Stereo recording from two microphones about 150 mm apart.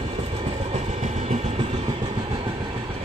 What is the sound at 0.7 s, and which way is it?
Train, 45° right (ahead or behind).